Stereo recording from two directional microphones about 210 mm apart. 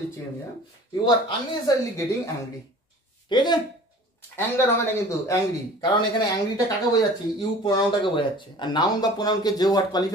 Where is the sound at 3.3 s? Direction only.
20° left (ahead or behind).